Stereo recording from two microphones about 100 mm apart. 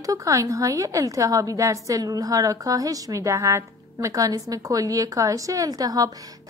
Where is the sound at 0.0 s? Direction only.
35° right (ahead or behind).